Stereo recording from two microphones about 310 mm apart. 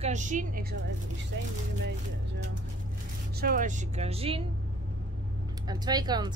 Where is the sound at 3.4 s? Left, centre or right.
Right.